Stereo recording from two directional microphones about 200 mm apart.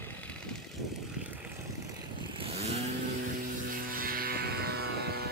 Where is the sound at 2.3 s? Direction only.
30° right (ahead or behind).